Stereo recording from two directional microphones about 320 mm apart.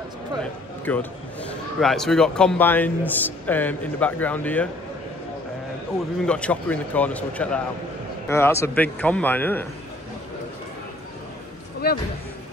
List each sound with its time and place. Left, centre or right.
0.8 s a man's voice: centre
6.2 s a man's voice: centre
11.8 s speech: left